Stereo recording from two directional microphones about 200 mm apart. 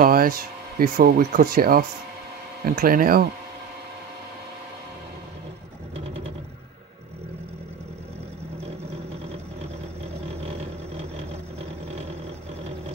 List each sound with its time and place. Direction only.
0.0 s speech: 45° right (ahead or behind)